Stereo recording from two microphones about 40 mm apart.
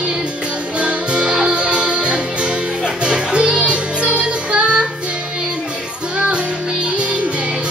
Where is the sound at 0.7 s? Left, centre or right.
Right.